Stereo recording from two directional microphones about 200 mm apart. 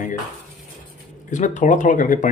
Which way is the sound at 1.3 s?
40° left (ahead or behind).